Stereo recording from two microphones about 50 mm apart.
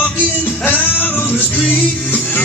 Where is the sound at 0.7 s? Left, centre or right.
Left.